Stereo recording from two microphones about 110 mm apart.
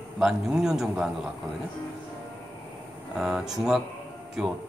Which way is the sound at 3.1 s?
5° right (ahead or behind).